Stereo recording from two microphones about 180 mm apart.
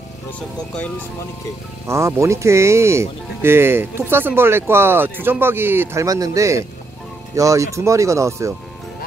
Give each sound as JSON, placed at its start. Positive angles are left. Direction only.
{"t": 1.9, "sound": "speech", "side_deg": -15}